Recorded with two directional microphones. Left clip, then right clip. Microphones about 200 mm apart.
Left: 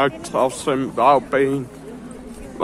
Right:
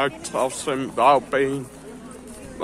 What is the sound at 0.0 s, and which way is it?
Speech, 5° left (ahead or behind).